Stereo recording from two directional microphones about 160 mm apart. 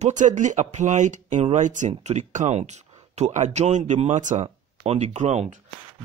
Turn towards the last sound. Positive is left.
turn(degrees=-45)  # may be behind; listen again after turning